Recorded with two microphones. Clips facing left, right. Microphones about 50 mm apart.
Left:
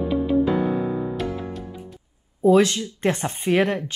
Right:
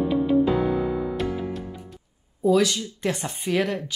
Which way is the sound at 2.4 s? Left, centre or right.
Left.